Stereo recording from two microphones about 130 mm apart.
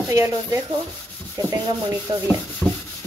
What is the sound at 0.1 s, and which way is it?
Sanding, 25° right (ahead or behind).